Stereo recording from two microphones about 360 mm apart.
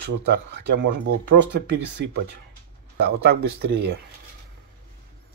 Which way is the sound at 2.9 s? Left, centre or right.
Right.